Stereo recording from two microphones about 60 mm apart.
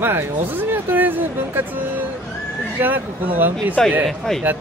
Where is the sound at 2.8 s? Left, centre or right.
Right.